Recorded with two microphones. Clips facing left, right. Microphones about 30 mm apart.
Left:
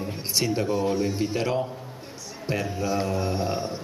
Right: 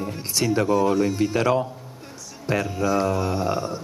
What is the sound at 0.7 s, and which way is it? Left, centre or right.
Speech, centre.